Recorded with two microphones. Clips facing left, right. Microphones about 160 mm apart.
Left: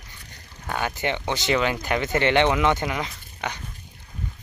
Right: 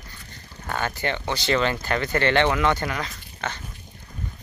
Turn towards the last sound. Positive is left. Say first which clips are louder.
# even
turn(degrees=15)  # may be behind; listen again after turning